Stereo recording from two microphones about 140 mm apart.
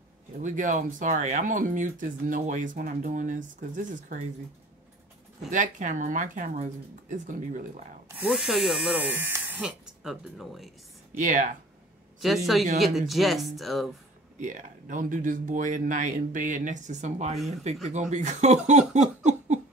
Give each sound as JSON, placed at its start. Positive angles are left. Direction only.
{"t": 0.4, "sound": "speech", "side_deg": -65}
{"t": 5.5, "sound": "speech", "side_deg": -65}
{"t": 8.3, "sound": "speech", "side_deg": -5}
{"t": 9.6, "sound": "speech", "side_deg": -5}
{"t": 11.1, "sound": "speech", "side_deg": -65}
{"t": 12.2, "sound": "speech", "side_deg": 0}
{"t": 14.4, "sound": "speech", "side_deg": -65}
{"t": 18.7, "sound": "a sound", "side_deg": -55}